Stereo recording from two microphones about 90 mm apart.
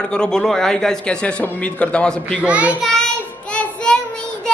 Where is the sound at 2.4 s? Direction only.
15° right (ahead or behind).